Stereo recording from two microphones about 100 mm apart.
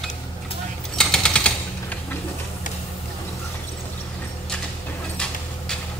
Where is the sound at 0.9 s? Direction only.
5° left (ahead or behind).